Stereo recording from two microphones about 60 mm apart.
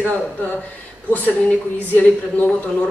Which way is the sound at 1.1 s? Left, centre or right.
Left.